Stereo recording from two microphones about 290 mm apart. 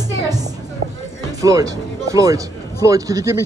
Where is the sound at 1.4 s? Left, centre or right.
Centre.